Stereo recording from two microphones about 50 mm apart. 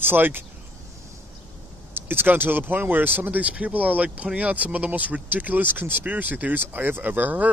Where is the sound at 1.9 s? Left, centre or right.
Right.